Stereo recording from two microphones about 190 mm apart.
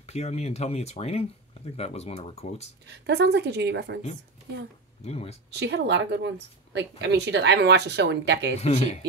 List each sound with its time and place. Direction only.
0.0 s speech: 35° left (ahead or behind)
2.9 s a woman's voice: 65° right (ahead or behind)
5.0 s speech: 35° left (ahead or behind)
5.5 s a woman's voice: 65° right (ahead or behind)
8.5 s speech: 35° left (ahead or behind)